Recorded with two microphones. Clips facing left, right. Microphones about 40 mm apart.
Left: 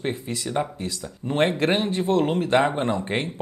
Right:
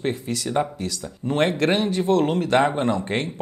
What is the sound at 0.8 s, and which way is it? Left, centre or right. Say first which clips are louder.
Speech: right 2 dB; centre.